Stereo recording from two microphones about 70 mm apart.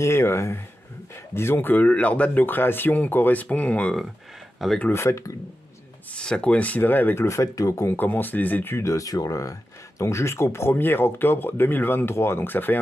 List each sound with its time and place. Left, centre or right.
0.0 s speech: left; by 3.9 s centre
4.6 s speech: centre
4.9 s speech: left
6.1 s speech: centre
7.2 s speech: left
7.9 s speech: left
8.7 s speech: left